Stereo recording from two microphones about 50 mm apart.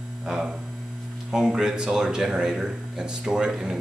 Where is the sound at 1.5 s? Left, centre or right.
Centre.